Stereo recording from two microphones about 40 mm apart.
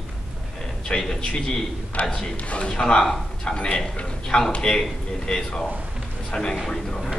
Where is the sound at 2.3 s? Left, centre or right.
Left.